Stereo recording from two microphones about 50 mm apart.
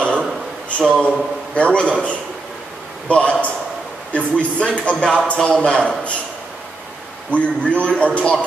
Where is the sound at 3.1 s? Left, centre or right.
Left.